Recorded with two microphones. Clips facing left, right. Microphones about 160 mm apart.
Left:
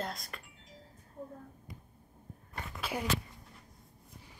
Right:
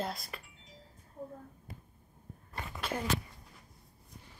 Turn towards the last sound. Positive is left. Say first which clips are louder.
# even
turn(degrees=10)  # may be behind; listen again after turning